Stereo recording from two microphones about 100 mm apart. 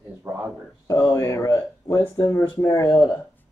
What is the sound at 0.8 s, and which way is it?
Speech, 35° left (ahead or behind).